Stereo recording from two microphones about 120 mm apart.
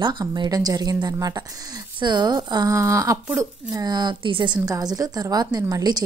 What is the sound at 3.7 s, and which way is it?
Speech, 35° right (ahead or behind).